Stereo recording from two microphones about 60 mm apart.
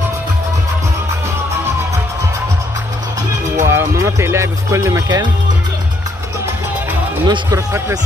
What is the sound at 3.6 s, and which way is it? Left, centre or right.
Speech, right.